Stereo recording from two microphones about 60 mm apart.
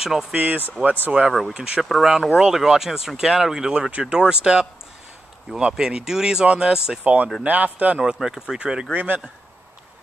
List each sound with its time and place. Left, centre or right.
0.0 s speech: centre
0.3 s a man's voice: right
1.1 s speech: centre
1.8 s speech: centre
7.0 s a man's voice: right
8.0 s speech: centre
8.9 s a man's voice: right